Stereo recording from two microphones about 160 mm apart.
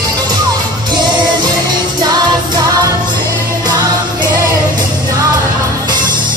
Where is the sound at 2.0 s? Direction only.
25° right (ahead or behind).